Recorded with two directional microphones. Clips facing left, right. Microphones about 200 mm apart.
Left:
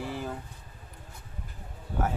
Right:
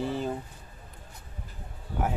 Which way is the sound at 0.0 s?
25° right (ahead or behind).